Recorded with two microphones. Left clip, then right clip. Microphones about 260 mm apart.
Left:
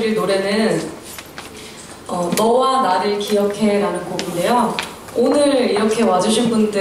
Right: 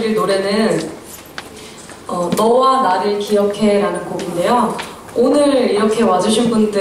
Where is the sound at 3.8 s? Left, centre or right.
Centre.